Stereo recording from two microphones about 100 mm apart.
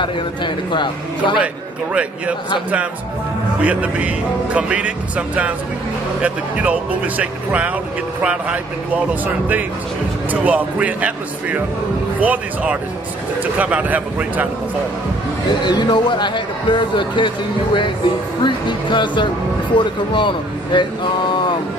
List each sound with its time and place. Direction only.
0.0 s speech: 50° left (ahead or behind)
3.6 s speech: 15° right (ahead or behind)
15.6 s speech: 45° left (ahead or behind)
18.4 s speech: 50° left (ahead or behind)